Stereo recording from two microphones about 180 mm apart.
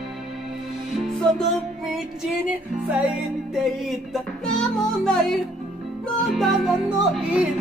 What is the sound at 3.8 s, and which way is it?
Music, centre (ahead or behind).